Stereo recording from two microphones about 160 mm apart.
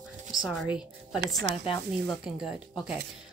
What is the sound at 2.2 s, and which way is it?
Speech, 5° right (ahead or behind).